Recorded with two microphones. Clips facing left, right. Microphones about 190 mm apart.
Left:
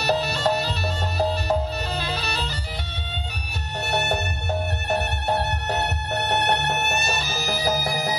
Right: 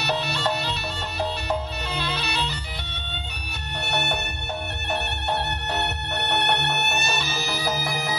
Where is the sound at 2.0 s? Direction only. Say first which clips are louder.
Even; 40° left (ahead or behind).